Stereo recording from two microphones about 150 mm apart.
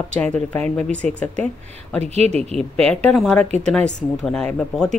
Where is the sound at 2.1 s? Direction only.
45° right (ahead or behind).